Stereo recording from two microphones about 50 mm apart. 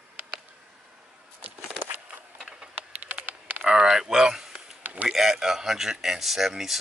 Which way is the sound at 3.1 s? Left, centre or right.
Right.